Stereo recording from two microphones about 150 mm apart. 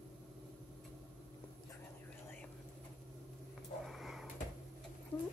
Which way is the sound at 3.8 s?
Centre (ahead or behind).